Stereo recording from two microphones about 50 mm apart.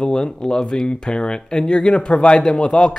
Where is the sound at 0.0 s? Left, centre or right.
Centre.